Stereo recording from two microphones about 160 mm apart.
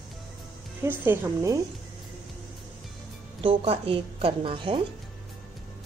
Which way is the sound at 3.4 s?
35° right (ahead or behind).